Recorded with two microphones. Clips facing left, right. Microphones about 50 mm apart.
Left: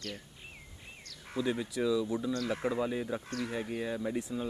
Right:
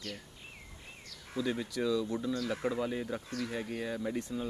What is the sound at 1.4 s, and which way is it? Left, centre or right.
Speech, centre.